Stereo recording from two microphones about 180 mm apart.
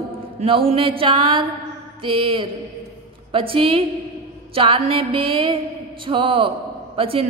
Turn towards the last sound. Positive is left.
turn(degrees=-30)  # may be behind; listen again after turning